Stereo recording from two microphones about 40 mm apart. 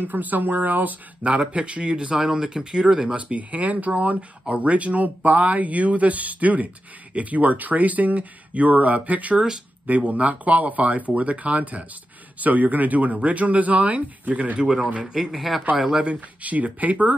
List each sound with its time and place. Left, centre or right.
0.0 s speech: right
1.4 s speech: right
3.2 s speech: right
15.3 s speech: centre
15.7 s speech: centre
16.4 s speech: right